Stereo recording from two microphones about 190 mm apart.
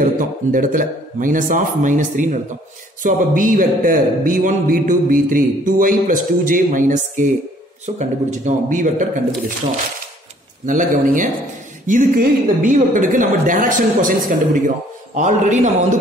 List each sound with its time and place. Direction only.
0.0 s a man's voice: 45° right (ahead or behind)
10.6 s a man's voice: 45° right (ahead or behind)